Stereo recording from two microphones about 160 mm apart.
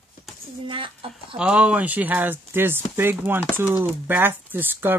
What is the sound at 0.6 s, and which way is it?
Speech, 35° right (ahead or behind).